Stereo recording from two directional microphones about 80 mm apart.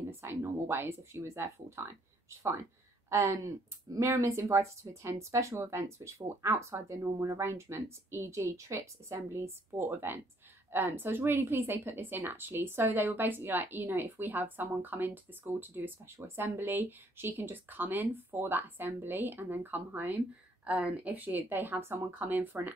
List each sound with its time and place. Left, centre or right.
0.1 s speech: right
3.1 s a woman's voice: right